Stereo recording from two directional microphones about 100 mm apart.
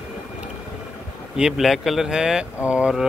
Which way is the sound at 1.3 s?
5° right (ahead or behind).